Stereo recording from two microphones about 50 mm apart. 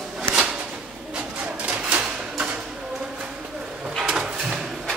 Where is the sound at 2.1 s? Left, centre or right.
Right.